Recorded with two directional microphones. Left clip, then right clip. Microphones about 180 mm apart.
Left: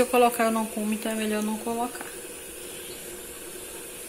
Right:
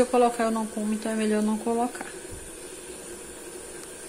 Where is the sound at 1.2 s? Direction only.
30° right (ahead or behind).